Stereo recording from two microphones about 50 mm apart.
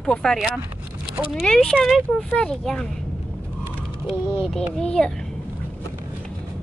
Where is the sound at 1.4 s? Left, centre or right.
Centre.